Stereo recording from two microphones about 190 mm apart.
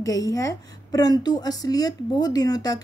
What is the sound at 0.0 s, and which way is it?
A woman's voice, 15° left (ahead or behind).